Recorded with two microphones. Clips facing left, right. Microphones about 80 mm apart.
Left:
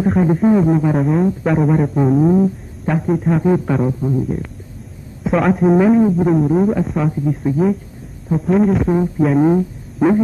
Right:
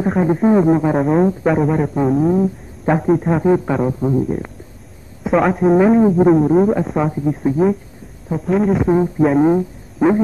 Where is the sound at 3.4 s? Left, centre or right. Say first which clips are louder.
Right 1 dB; centre.